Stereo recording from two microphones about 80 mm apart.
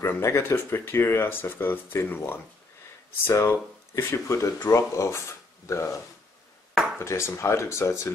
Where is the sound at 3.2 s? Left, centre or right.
Left.